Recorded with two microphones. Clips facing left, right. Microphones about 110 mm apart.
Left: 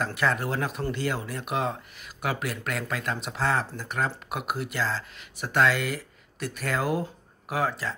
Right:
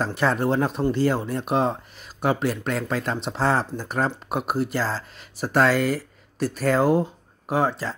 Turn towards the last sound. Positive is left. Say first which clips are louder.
# right 5 dB
turn(degrees=-30)  # may be behind; listen again after turning